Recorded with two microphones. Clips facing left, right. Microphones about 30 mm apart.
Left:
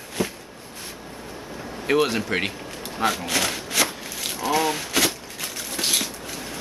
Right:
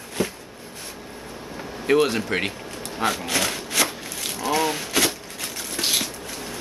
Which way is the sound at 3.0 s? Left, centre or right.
Centre.